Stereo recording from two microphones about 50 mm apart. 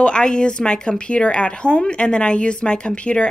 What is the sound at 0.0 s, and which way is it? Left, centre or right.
Speech, centre.